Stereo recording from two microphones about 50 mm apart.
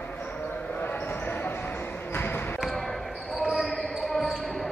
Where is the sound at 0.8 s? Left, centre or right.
Left.